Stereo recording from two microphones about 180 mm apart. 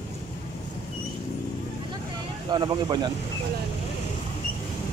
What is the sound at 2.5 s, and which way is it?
Speech, 25° right (ahead or behind).